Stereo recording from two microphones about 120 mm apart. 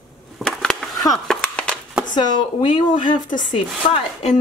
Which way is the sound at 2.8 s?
40° left (ahead or behind).